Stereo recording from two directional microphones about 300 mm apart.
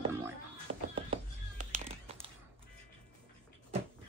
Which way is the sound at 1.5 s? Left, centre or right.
Right.